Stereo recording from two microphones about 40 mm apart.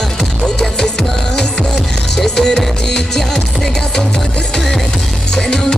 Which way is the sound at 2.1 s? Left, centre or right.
Centre.